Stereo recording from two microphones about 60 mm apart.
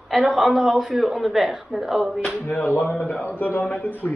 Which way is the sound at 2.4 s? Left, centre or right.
Left.